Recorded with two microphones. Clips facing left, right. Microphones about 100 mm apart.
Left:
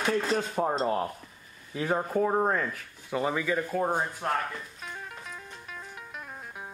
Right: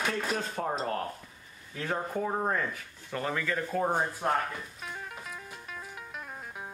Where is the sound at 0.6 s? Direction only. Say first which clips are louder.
Left 6 dB; 15° left (ahead or behind).